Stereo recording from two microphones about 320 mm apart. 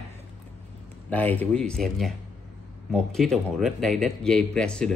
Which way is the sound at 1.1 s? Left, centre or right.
Centre.